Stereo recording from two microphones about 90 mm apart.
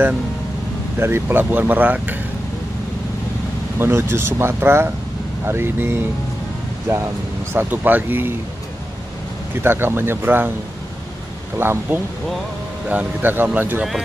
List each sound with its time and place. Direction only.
0.9 s speech: 25° right (ahead or behind)
3.7 s speech: 25° right (ahead or behind)
9.6 s speech: 25° right (ahead or behind)
11.5 s speech: 25° right (ahead or behind)